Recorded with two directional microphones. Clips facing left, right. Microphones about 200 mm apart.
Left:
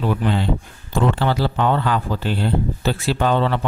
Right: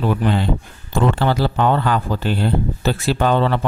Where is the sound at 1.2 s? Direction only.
45° right (ahead or behind).